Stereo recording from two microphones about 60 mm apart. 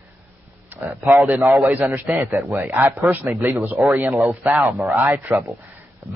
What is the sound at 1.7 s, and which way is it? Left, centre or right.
A man's voice, right.